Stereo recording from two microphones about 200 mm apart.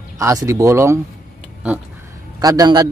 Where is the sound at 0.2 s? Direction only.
15° right (ahead or behind).